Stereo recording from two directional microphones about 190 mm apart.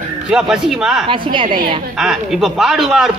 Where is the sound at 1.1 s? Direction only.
25° right (ahead or behind).